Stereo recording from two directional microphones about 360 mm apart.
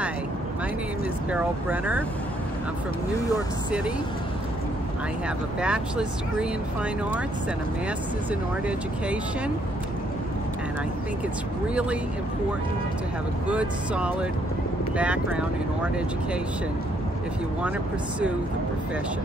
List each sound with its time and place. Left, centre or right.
1.3 s speech: centre
5.6 s speech: centre
13.5 s speech: centre